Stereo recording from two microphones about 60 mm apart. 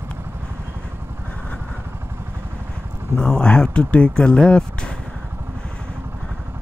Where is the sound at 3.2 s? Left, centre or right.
Centre.